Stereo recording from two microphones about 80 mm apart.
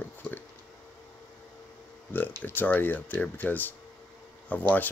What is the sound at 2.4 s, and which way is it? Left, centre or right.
Speech, left.